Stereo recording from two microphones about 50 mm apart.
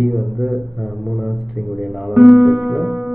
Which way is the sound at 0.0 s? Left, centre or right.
Centre.